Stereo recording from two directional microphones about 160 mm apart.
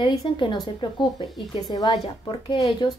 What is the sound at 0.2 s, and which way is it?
A woman's voice, 25° left (ahead or behind).